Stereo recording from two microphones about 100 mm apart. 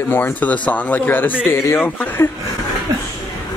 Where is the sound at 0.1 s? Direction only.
20° left (ahead or behind).